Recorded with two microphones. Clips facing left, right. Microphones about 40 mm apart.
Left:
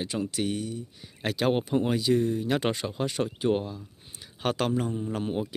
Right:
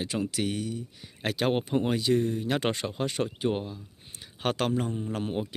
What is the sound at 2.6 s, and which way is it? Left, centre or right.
Speech, right.